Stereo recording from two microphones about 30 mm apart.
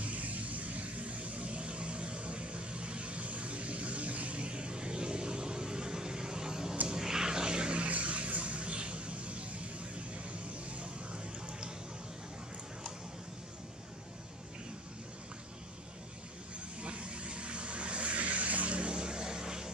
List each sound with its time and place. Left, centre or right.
0.0 s vehicle: right
7.9 s a sound: right
16.8 s vehicle: right
18.8 s vehicle: right